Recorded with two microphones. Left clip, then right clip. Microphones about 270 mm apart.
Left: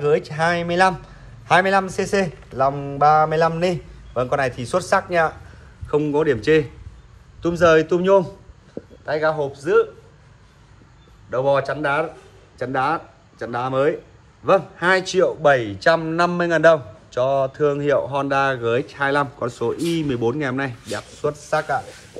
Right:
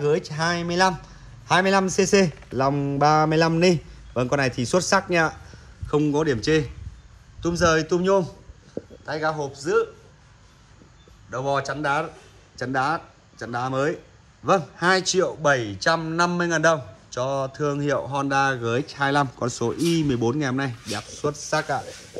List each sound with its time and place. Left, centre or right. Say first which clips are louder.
0.0 s a man's voice: left 4 dB; centre
11.2 s a man's voice: left 6 dB; centre